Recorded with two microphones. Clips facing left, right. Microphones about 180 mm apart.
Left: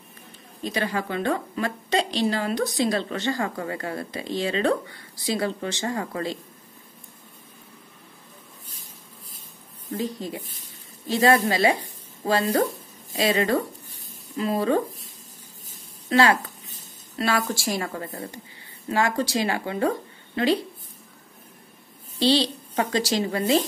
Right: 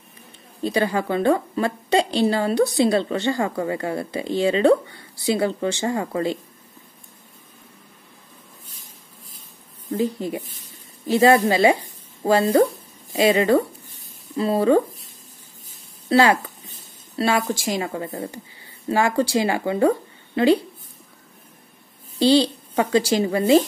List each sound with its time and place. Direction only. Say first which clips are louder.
0.7 s a woman's voice: right 6 dB; 30° right (ahead or behind)
9.9 s a woman's voice: right 6 dB; 25° right (ahead or behind)
16.1 s a woman's voice: right 3 dB; 30° right (ahead or behind)
22.8 s a woman's voice: right 5 dB; 25° right (ahead or behind)